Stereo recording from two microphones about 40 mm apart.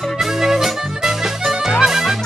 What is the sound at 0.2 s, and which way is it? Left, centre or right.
Music, centre.